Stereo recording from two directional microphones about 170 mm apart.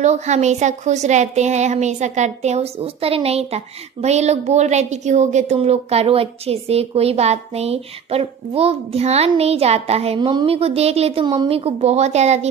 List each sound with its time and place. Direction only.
0.0 s speech: 40° right (ahead or behind)